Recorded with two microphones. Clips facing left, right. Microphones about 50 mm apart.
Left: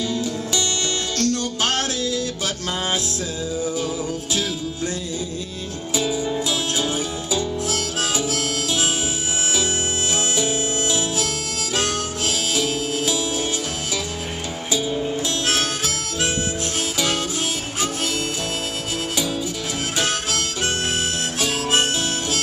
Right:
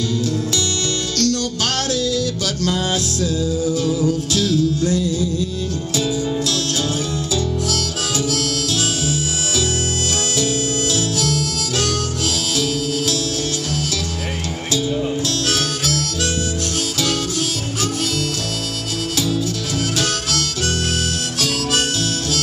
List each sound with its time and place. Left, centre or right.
1.1 s music: left
10.3 s music: centre
12.5 s music: centre
15.4 s harmonica: centre
20.0 s harmonica: centre